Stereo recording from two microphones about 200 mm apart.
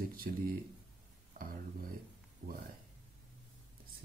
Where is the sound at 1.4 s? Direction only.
40° right (ahead or behind).